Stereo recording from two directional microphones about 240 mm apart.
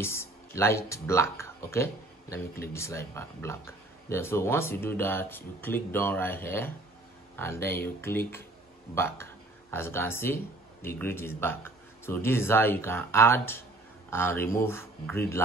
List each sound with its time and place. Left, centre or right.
0.0 s speech: centre